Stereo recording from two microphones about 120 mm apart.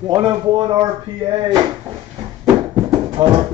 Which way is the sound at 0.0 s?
35° right (ahead or behind).